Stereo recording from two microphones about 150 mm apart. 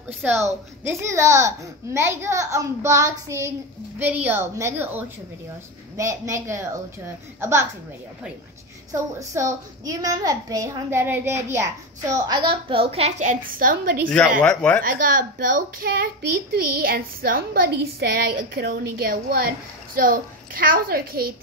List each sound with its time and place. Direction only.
0.2 s a child's voice: 15° right (ahead or behind)
9.2 s a child's voice: 20° right (ahead or behind); by 14.1 s 70° right (ahead or behind)
14.1 s speech: 5° left (ahead or behind)
14.8 s a child's voice: 75° right (ahead or behind)